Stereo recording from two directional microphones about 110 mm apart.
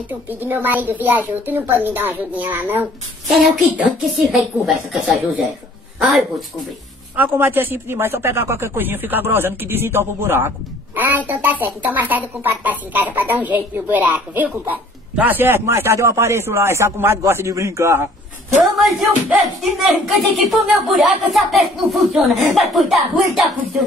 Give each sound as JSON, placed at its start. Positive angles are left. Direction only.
{"t": 0.3, "sound": "a woman's voice", "side_deg": -20}
{"t": 3.3, "sound": "speech", "side_deg": 0}
{"t": 7.2, "sound": "speech", "side_deg": -20}
{"t": 18.6, "sound": "speech", "side_deg": 0}